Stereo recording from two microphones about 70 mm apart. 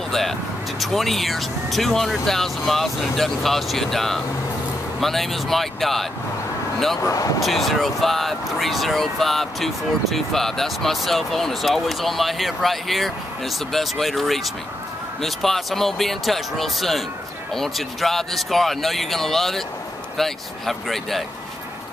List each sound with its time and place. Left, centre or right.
0.1 s speech: centre
7.0 s speech: left
7.3 s speech: centre